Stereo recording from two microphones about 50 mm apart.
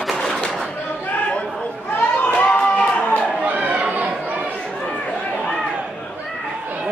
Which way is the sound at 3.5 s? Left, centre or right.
Right.